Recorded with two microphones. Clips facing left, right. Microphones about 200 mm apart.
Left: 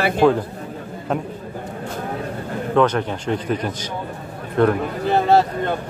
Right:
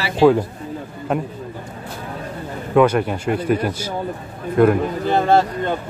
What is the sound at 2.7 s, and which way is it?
A man's voice, 10° right (ahead or behind).